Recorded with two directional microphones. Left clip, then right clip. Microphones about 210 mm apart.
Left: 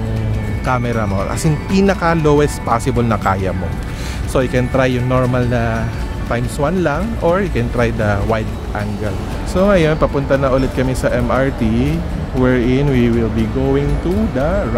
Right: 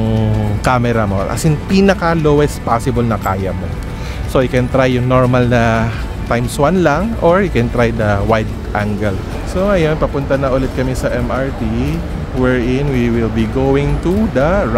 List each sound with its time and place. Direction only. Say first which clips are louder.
0.7 s speech: right 4 dB; 20° right (ahead or behind); by 3.5 s centre (ahead or behind)
4.3 s speech: right 2 dB; 10° right (ahead or behind)
9.5 s speech: left 1 dB; 15° left (ahead or behind)
11.2 s speech: left 2 dB; 20° left (ahead or behind)
13.4 s speech: right 2 dB; 5° right (ahead or behind)